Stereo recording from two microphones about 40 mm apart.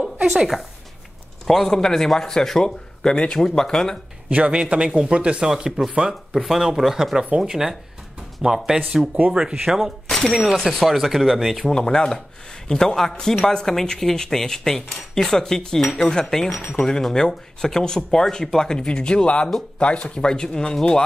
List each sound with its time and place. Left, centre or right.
0.3 s speech: centre
1.4 s a man's voice: centre
3.3 s a man's voice: centre
4.5 s a man's voice: right
5.4 s speech: centre
5.7 s speech: centre
8.6 s a man's voice: centre
10.0 s a sound: centre
10.3 s speech: centre
11.5 s a man's voice: centre
16.5 s speech: left
16.8 s a man's voice: centre